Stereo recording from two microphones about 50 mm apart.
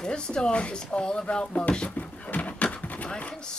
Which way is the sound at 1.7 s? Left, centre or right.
Left.